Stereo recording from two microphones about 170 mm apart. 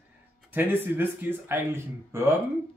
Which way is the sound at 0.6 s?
10° right (ahead or behind).